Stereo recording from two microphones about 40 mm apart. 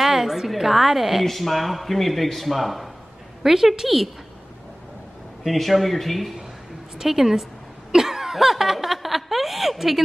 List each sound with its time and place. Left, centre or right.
0.0 s a woman's voice: centre
5.4 s a woman's voice: centre
7.9 s a sound: centre